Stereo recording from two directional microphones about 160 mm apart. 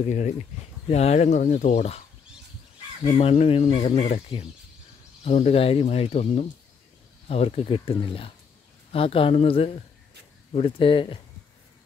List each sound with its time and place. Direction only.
0.8 s speech: 40° left (ahead or behind)